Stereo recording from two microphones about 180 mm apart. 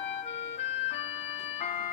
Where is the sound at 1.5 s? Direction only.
40° left (ahead or behind).